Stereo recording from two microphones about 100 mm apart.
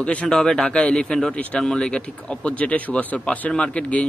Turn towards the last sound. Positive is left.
turn(degrees=10)  # may be behind; listen again after turning